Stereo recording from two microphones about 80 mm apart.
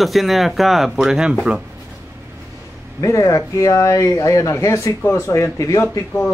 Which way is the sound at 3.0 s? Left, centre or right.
Left.